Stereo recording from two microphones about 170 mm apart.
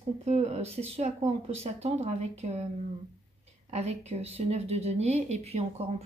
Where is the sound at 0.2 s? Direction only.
40° right (ahead or behind).